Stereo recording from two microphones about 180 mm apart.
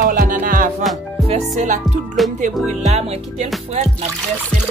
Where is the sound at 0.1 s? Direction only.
50° right (ahead or behind).